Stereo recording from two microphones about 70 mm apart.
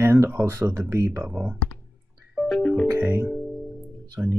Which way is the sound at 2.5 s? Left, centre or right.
Centre.